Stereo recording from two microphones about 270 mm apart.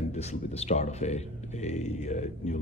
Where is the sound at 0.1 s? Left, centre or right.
Left.